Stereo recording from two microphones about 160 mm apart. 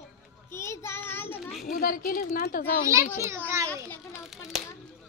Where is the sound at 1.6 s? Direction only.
60° left (ahead or behind).